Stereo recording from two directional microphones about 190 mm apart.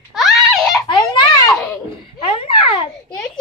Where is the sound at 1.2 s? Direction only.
20° left (ahead or behind).